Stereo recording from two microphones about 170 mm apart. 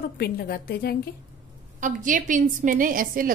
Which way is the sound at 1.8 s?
50° right (ahead or behind).